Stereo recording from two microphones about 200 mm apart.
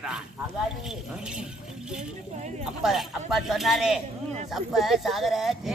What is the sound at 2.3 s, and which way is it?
Speech, 35° right (ahead or behind).